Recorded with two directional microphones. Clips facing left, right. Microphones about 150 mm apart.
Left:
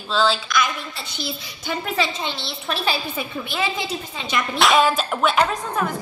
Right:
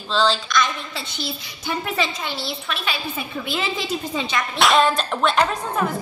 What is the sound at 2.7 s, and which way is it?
Speech, 35° left (ahead or behind).